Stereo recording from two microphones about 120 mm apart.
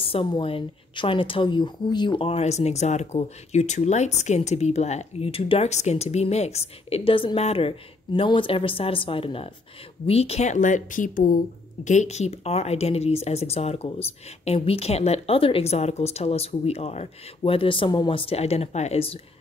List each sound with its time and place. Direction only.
0.0 s speech: 45° left (ahead or behind)
2.2 s speech: 65° left (ahead or behind)
17.4 s speech: 45° left (ahead or behind)